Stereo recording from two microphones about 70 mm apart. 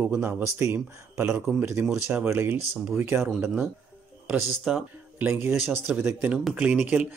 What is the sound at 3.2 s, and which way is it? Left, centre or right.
Speech, centre.